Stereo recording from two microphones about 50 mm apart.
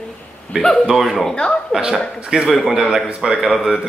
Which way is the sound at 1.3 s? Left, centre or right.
Left.